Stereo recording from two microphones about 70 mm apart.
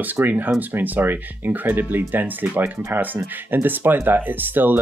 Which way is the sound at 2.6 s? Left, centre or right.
Right.